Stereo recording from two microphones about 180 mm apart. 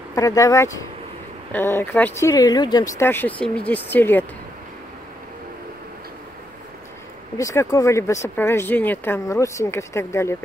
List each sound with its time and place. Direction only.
0.1 s speech: 20° left (ahead or behind)
7.3 s speech: 20° left (ahead or behind)